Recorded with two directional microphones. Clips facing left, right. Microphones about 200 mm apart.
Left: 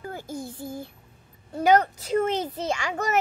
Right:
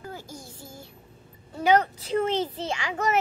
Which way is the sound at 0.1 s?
55° left (ahead or behind).